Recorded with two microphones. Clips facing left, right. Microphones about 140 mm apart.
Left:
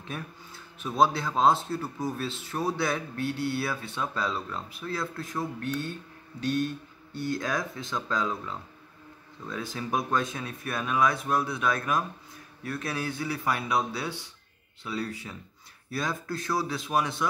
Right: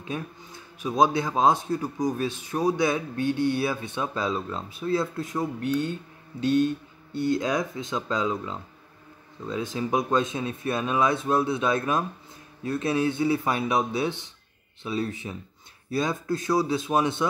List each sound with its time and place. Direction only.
0.1 s a man's voice: 15° right (ahead or behind)